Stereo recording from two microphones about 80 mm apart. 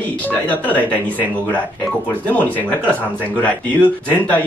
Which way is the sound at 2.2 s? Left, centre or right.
Left.